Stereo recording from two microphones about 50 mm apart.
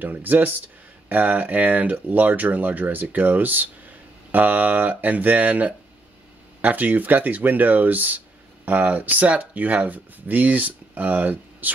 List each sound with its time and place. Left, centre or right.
0.0 s speech: right